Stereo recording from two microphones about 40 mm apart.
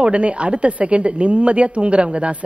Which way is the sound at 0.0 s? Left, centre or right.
Right.